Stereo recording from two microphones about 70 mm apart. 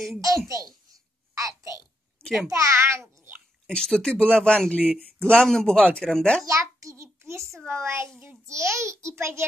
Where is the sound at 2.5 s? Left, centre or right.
Right.